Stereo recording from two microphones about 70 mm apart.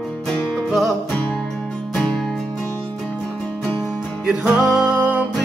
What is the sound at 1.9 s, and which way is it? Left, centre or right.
Music, centre.